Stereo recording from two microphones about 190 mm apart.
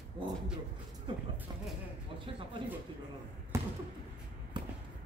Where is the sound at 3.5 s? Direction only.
15° right (ahead or behind).